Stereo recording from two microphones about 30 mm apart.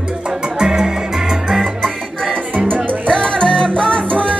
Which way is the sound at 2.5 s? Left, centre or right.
Right.